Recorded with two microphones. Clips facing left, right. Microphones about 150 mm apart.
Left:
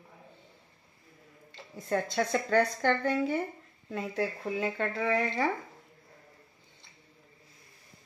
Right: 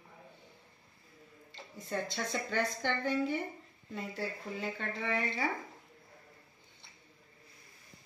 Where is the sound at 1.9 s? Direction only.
65° left (ahead or behind).